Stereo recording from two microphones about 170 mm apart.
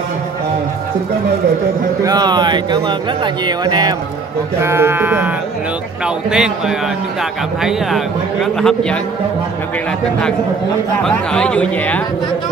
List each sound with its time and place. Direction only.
2.0 s speech: 25° right (ahead or behind)
4.6 s speech: 15° right (ahead or behind)
7.6 s speech: centre (ahead or behind)
11.0 s speech: 5° left (ahead or behind)